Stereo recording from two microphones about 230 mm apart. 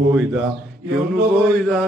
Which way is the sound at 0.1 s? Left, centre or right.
Centre.